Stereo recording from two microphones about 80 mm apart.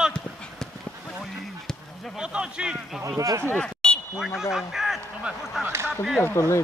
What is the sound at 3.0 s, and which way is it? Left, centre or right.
Speech, right.